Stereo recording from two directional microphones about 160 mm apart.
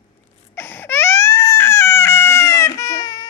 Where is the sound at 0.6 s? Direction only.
15° left (ahead or behind).